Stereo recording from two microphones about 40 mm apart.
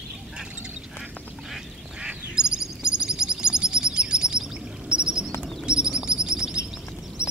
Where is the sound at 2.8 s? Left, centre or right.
Right.